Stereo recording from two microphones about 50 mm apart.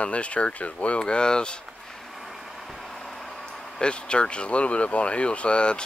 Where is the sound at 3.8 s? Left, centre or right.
Left.